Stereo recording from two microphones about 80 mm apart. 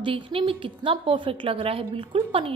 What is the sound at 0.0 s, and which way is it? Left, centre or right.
A woman's voice, right.